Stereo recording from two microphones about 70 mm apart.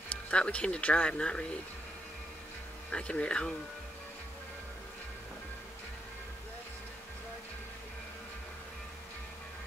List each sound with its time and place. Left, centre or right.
0.3 s speech: centre
2.9 s speech: centre